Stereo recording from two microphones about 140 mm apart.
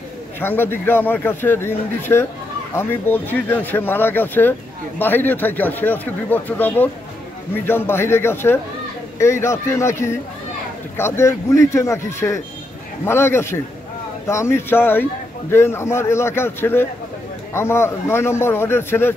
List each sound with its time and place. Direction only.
0.4 s a man's voice: 15° left (ahead or behind)